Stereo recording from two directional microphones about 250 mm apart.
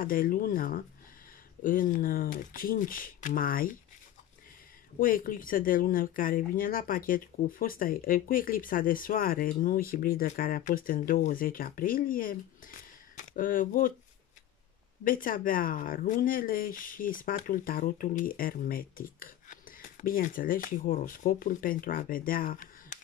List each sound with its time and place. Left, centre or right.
0.0 s speech: left
4.9 s speech: left
15.0 s speech: left